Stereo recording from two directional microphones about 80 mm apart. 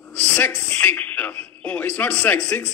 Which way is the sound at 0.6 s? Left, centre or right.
Left.